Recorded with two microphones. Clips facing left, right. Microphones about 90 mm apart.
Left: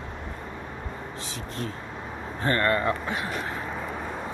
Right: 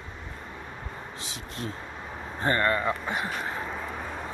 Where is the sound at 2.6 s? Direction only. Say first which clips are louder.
Left 2 dB; 5° right (ahead or behind).